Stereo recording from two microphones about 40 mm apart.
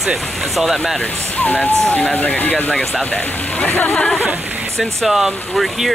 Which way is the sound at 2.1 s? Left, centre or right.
Left.